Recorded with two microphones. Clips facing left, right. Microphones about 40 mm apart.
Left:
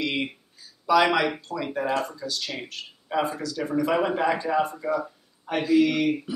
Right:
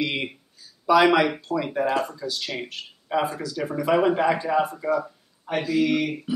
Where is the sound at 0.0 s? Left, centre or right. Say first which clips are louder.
Right 1 dB; centre.